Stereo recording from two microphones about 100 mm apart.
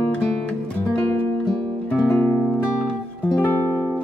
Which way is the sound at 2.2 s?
25° left (ahead or behind).